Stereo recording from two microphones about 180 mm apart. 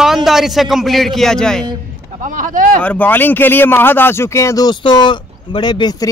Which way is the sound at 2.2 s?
45° right (ahead or behind).